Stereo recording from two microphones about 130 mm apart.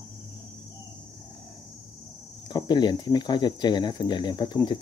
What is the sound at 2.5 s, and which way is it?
Speech, 35° left (ahead or behind).